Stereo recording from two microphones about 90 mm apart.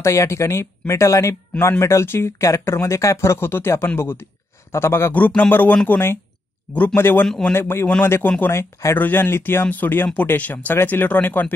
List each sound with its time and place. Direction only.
0.0 s speech: 35° left (ahead or behind)
5.1 s speech: 15° left (ahead or behind)
7.2 s a man's voice: 5° left (ahead or behind)
7.5 s speech: 25° left (ahead or behind)